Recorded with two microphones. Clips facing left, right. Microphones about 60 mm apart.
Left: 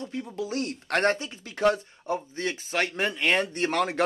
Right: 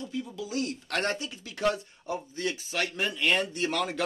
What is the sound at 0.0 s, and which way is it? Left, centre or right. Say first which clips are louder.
A man's voice: left 3 dB; left.